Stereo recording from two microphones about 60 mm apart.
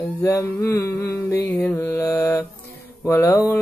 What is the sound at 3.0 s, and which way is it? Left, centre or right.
Speech, left.